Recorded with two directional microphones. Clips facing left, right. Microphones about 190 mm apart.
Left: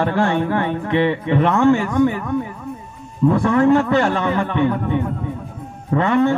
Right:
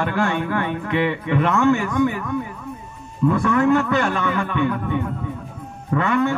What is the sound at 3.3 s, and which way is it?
A man's voice, 30° left (ahead or behind).